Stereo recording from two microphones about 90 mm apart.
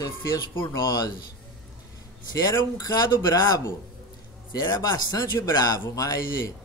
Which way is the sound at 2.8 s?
50° left (ahead or behind).